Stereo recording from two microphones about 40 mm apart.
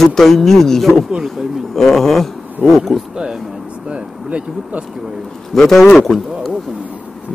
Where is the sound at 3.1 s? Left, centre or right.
Centre.